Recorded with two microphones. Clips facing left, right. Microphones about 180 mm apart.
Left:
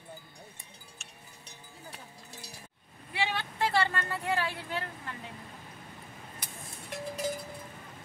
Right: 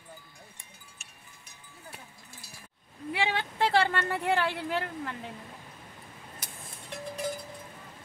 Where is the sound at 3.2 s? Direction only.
90° right.